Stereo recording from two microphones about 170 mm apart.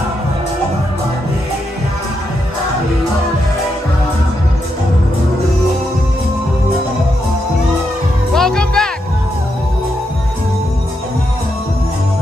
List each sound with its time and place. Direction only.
8.3 s music: 5° left (ahead or behind)